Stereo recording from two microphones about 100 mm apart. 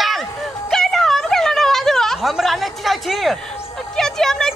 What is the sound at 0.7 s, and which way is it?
Wail, 5° left (ahead or behind).